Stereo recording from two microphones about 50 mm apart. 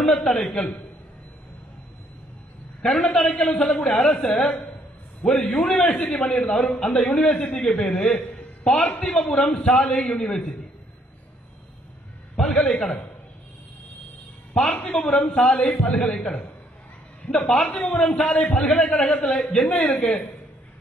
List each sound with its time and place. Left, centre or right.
0.0 s a man's voice: centre
2.8 s a man's voice: centre
12.4 s a man's voice: centre
14.5 s a man's voice: centre